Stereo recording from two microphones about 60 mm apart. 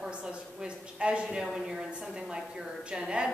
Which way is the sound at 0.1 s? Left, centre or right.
Centre.